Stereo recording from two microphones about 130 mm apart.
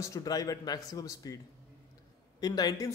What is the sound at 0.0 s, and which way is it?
Speech, 25° left (ahead or behind).